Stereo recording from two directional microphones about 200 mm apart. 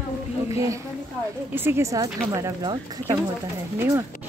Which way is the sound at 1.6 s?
10° right (ahead or behind).